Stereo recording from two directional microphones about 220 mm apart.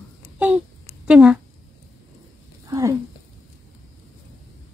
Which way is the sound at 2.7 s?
15° right (ahead or behind).